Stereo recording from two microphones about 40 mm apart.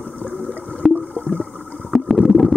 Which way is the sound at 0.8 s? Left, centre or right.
Centre.